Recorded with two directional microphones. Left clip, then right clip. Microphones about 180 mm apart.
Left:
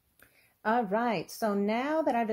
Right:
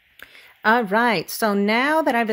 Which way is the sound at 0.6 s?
35° right (ahead or behind).